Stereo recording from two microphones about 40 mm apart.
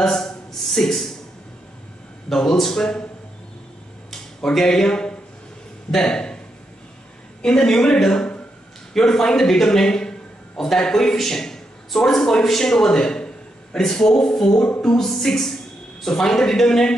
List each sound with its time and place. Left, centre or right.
0.0 s a sound: centre
2.3 s a man's voice: centre
4.4 s a man's voice: centre
7.4 s a man's voice: centre